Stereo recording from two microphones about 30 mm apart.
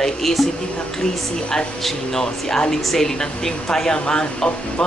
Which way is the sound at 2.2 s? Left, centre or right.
Left.